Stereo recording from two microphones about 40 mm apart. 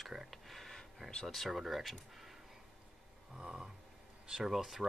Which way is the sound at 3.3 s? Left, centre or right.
Centre.